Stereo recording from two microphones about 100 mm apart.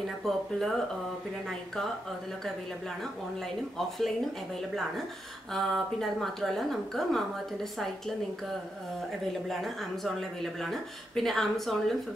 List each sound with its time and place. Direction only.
0.2 s speech: centre (ahead or behind)
5.5 s speech: centre (ahead or behind)
9.5 s speech: centre (ahead or behind)